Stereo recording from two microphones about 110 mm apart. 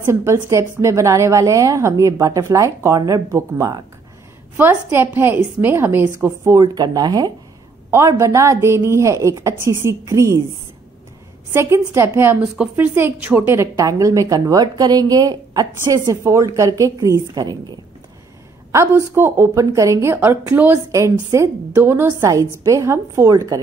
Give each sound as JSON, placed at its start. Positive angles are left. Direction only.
{"t": 0.0, "sound": "a woman's voice", "side_deg": -25}
{"t": 4.8, "sound": "a woman's voice", "side_deg": -25}
{"t": 6.6, "sound": "a woman's voice", "side_deg": -35}
{"t": 8.2, "sound": "a woman's voice", "side_deg": -25}
{"t": 11.5, "sound": "a woman's voice", "side_deg": -25}
{"t": 13.7, "sound": "a woman's voice", "side_deg": -30}
{"t": 17.4, "sound": "a woman's voice", "side_deg": -40}
{"t": 18.7, "sound": "a woman's voice", "side_deg": -25}